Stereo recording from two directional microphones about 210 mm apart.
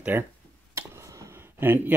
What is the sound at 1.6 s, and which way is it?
Speech, 10° right (ahead or behind).